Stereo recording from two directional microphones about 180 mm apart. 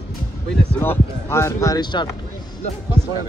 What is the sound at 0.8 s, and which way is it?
Speech, 15° left (ahead or behind).